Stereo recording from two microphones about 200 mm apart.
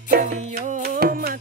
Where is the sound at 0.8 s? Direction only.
50° right (ahead or behind).